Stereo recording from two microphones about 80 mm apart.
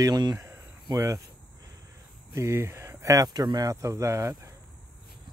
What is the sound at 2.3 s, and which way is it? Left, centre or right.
Speech, right.